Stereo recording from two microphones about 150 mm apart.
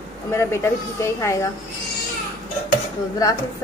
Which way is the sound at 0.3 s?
15° left (ahead or behind).